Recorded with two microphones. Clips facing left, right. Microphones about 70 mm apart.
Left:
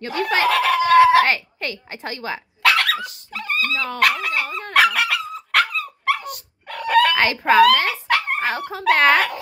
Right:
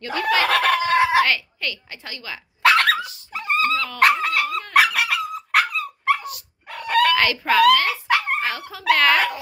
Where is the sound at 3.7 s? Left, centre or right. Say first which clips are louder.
Right 1 dB; left.